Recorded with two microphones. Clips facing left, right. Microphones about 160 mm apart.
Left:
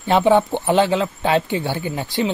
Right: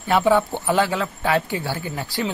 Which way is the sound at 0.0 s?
25° left (ahead or behind).